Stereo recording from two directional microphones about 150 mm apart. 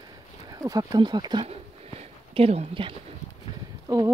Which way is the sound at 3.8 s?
20° right (ahead or behind).